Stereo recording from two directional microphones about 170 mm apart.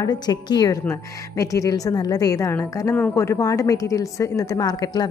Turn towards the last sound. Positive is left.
turn(degrees=20)  # may be behind; listen again after turning